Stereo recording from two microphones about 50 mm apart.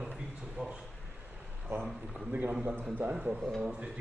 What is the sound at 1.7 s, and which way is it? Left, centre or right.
Speech, right.